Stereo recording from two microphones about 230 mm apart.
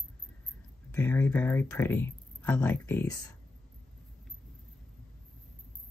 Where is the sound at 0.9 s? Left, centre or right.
Centre.